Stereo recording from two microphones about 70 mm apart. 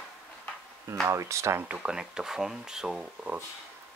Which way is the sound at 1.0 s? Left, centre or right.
Right.